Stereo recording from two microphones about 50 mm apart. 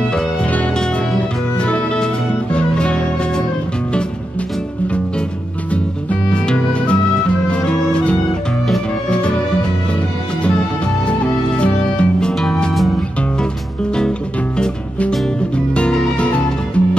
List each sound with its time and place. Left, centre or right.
1.6 s music: left
6.3 s music: centre
11.1 s music: left
15.0 s music: left